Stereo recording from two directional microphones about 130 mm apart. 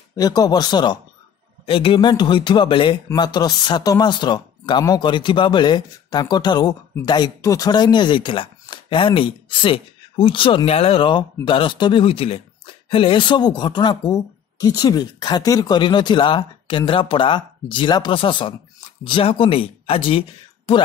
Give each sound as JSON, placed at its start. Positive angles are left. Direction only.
{"t": 0.1, "sound": "speech", "side_deg": 30}